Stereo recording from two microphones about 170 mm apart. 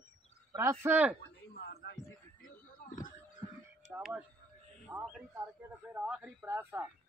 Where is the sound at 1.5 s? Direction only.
70° left (ahead or behind).